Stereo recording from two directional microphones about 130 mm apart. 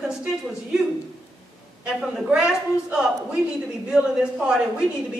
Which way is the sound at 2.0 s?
5° right (ahead or behind).